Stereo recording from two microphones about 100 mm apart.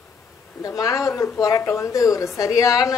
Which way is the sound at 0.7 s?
35° left (ahead or behind).